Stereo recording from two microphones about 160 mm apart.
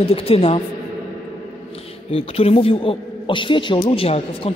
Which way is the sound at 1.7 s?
35° left (ahead or behind).